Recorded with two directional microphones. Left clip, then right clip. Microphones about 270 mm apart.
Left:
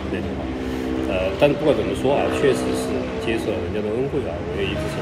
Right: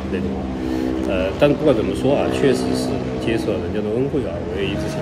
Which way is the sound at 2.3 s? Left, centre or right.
Right.